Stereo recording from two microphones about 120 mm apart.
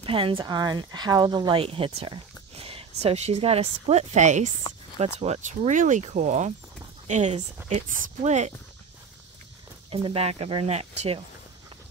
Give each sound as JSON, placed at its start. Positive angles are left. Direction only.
{"t": 0.0, "sound": "speech", "side_deg": -45}
{"t": 0.5, "sound": "speech", "side_deg": -35}
{"t": 1.6, "sound": "speech", "side_deg": -50}
{"t": 4.9, "sound": "speech", "side_deg": -65}
{"t": 9.8, "sound": "speech", "side_deg": -50}